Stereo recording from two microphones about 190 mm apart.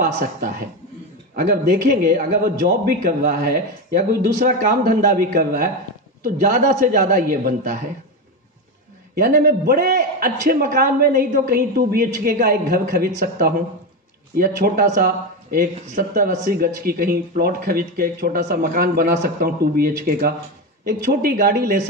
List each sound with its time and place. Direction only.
0.0 s a man's voice: 45° right (ahead or behind)
9.1 s a man's voice: 50° right (ahead or behind)